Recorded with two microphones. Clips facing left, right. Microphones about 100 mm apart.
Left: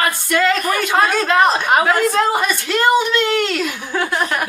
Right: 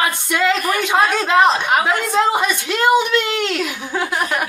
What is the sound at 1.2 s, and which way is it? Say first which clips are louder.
Speech: even; 15° right (ahead or behind).